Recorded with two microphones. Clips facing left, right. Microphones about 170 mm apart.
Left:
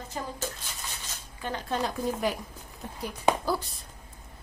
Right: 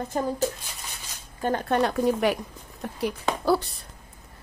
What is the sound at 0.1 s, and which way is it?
Speech, 50° right (ahead or behind).